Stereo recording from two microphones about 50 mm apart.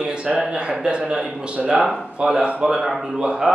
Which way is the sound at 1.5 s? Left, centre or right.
Right.